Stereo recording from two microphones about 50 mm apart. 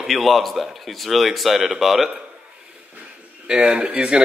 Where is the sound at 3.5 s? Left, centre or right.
Centre.